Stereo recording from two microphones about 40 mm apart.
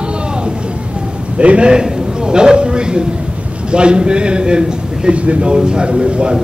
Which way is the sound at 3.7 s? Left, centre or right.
Right.